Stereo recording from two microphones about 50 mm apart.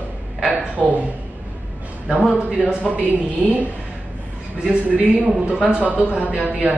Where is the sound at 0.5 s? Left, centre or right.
Right.